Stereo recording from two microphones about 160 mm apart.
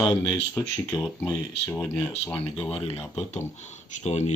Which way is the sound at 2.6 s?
35° left (ahead or behind).